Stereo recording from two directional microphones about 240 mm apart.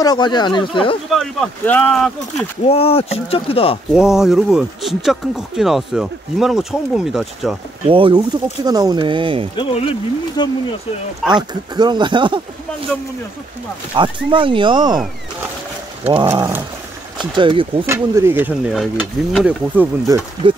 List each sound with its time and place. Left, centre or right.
0.0 s speech: centre
1.1 s speech: centre
2.6 s speech: left
3.9 s speech: centre
7.9 s speech: centre
9.6 s speech: left
11.2 s speech: centre
11.7 s speech: centre
13.9 s speech: right
16.1 s stir: centre
17.2 s speech: right
17.9 s stir: centre